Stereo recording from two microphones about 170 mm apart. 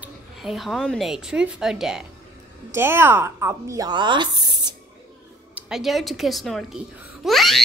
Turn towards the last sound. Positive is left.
turn(degrees=0)  # may be behind; listen again after turning